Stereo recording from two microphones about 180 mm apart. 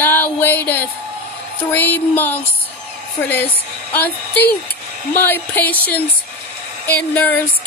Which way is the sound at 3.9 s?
10° left (ahead or behind).